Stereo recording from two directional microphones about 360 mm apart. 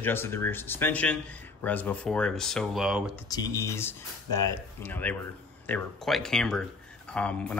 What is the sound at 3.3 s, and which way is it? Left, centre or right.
Speech, centre.